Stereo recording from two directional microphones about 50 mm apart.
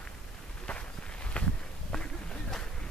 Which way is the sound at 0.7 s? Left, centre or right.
Left.